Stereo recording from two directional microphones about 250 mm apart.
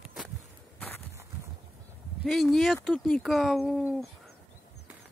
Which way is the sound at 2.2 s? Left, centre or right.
Centre.